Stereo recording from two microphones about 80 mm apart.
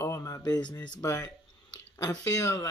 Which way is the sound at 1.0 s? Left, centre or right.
Left.